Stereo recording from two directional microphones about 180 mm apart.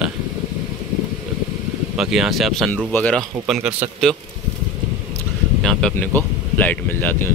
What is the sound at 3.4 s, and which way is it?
Speech, 5° right (ahead or behind).